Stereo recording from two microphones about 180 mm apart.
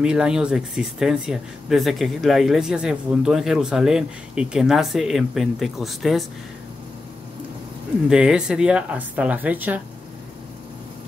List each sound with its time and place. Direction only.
0.0 s speech: 5° right (ahead or behind)
8.1 s speech: 5° right (ahead or behind)